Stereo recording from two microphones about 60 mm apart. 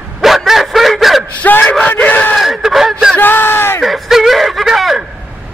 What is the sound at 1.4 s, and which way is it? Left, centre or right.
Yell, left.